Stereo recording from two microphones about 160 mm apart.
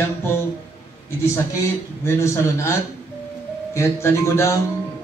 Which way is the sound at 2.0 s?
15° left (ahead or behind).